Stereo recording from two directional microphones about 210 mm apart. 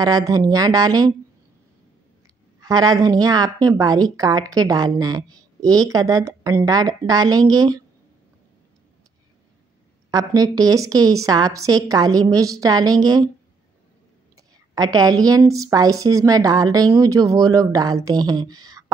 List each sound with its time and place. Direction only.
0.0 s a woman's voice: 15° right (ahead or behind)
2.6 s a woman's voice: 20° right (ahead or behind)
10.1 s a woman's voice: 15° right (ahead or behind)
14.8 s a woman's voice: 20° right (ahead or behind)